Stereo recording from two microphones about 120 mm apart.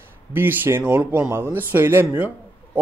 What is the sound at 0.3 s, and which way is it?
A man's voice, 15° right (ahead or behind).